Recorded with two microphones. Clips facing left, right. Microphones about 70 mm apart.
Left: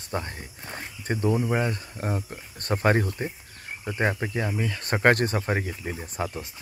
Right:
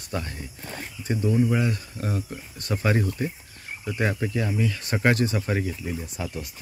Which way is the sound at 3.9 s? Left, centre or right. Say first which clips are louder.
Even; left.